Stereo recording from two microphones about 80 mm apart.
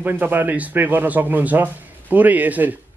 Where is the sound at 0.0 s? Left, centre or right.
Right.